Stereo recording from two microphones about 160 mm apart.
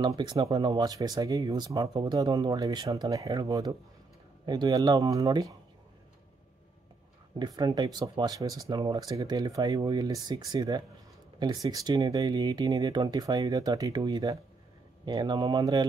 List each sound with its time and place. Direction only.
0.0 s speech: 25° right (ahead or behind)
7.3 s speech: 25° right (ahead or behind)